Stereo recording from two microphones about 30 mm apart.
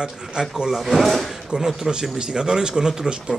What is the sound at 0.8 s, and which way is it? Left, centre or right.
Speech, centre.